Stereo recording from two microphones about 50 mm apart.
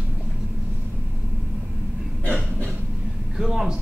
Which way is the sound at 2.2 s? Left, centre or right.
Left.